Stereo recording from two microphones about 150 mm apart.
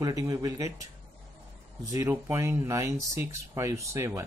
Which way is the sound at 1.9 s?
20° right (ahead or behind).